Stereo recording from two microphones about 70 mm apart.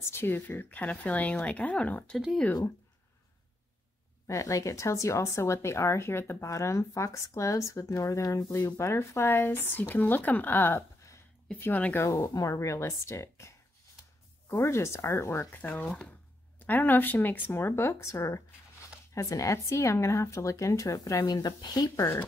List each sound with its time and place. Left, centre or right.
0.1 s speech: left
4.3 s speech: left
12.0 s speech: left
14.6 s speech: left
15.7 s speech: centre
16.5 s speech: left
21.4 s speech: left